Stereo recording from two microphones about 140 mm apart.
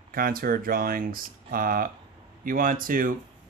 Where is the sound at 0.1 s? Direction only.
90° right.